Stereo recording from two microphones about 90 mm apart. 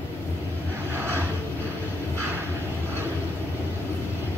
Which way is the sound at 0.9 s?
25° right (ahead or behind).